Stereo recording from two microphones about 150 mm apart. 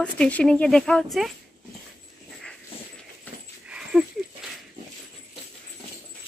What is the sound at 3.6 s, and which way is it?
Dog, 5° right (ahead or behind).